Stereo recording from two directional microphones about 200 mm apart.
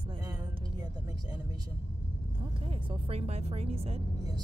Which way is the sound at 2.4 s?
25° right (ahead or behind).